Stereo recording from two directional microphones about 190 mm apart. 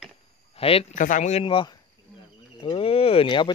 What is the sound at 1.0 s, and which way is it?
Speech, 40° left (ahead or behind).